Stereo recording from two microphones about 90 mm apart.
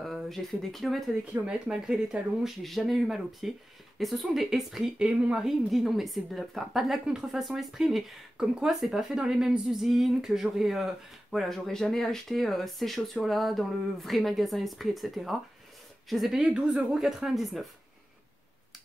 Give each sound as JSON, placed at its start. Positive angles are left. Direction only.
{"t": 0.0, "sound": "speech", "side_deg": 0}
{"t": 1.3, "sound": "a woman's voice", "side_deg": -10}